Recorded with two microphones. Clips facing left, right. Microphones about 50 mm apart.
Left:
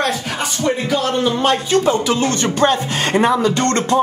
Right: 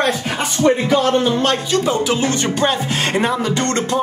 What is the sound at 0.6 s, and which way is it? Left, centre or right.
Speech, right.